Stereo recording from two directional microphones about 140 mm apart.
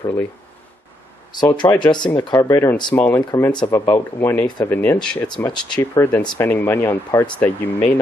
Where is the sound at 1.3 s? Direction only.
30° left (ahead or behind).